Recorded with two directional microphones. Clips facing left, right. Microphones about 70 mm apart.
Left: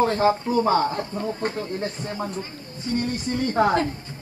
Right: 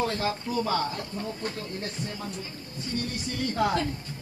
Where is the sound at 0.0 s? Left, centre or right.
Left.